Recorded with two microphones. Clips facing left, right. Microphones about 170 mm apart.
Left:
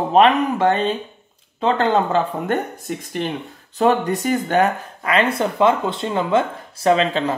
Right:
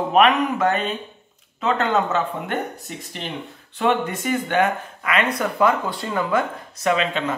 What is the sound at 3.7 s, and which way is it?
Speech, 40° left (ahead or behind).